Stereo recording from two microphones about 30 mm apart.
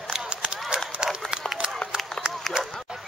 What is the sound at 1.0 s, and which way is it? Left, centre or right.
Run, right.